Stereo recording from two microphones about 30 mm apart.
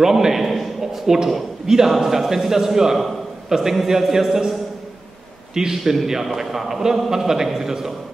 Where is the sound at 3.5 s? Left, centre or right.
Centre.